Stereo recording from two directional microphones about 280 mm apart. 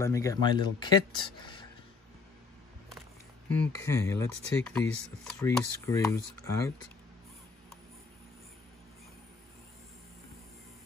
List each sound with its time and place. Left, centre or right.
0.0 s speech: centre
3.4 s speech: centre